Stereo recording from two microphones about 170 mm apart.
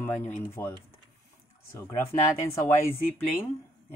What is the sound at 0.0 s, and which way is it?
Speech, 10° left (ahead or behind).